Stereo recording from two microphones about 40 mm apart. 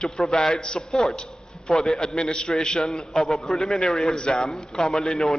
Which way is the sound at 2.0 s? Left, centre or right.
Centre.